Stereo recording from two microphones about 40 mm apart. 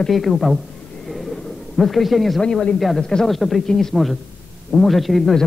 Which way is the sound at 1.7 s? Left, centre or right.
Centre.